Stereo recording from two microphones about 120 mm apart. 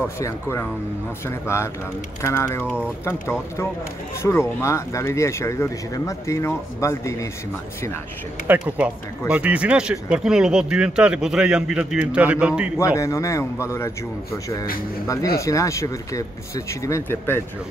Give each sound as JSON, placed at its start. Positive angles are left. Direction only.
{"t": 0.2, "sound": "speech", "side_deg": 20}
{"t": 2.6, "sound": "speech", "side_deg": -10}
{"t": 3.1, "sound": "speech", "side_deg": 20}
{"t": 8.5, "sound": "speech", "side_deg": -15}
{"t": 12.7, "sound": "speech", "side_deg": 25}